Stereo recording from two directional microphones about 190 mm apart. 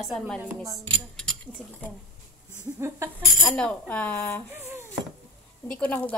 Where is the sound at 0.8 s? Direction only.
5° left (ahead or behind).